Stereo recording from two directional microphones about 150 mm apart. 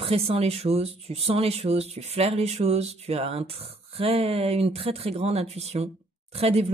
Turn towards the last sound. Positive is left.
turn(degrees=-40)  # may be behind; listen again after turning